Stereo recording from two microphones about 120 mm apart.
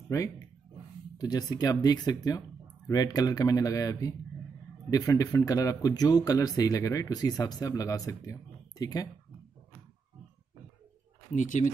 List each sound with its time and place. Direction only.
0.1 s speech: 25° left (ahead or behind)
11.3 s speech: 90° left